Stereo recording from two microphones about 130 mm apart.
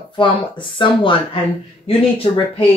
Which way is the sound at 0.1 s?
40° left (ahead or behind).